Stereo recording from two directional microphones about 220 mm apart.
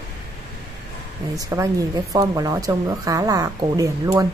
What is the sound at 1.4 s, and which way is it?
Speech, 15° right (ahead or behind).